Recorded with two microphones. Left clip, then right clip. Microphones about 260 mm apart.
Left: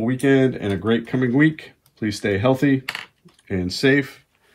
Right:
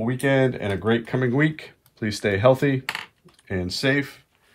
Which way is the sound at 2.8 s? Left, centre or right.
Right.